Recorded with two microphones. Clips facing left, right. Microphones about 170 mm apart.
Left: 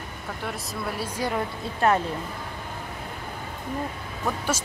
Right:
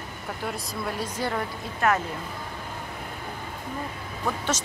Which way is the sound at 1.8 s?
30° left (ahead or behind).